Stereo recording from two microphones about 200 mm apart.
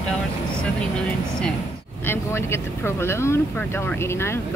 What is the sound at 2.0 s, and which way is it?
Speech, 10° left (ahead or behind).